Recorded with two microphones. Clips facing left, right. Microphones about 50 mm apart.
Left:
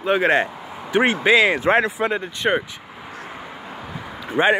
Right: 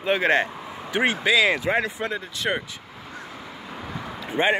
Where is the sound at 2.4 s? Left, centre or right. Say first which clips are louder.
Left 5 dB; left.